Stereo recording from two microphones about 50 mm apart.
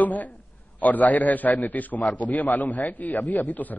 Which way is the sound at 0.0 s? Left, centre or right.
Left.